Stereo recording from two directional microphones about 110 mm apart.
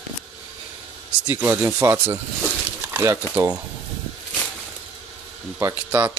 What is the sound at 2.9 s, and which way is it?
Crumpling, 20° right (ahead or behind).